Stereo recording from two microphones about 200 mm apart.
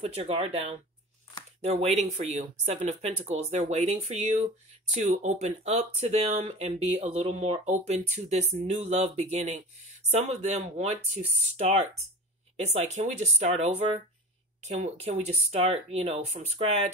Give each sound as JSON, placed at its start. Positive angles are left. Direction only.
{"t": 0.0, "sound": "speech", "side_deg": -30}